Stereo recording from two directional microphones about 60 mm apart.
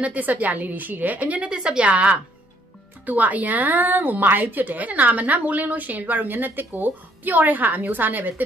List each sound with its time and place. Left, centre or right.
0.0 s a woman's voice: right